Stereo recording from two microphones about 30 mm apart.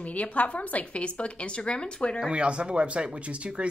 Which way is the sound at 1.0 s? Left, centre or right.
Left.